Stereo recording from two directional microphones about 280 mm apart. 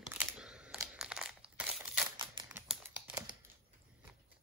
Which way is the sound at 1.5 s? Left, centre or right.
Centre.